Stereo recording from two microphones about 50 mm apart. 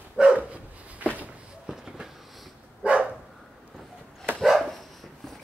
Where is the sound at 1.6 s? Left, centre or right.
Centre.